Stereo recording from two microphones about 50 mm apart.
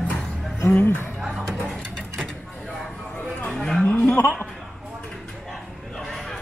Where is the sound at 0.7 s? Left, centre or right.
Left.